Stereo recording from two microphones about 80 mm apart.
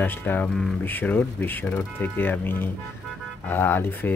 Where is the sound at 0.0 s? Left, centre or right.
Left.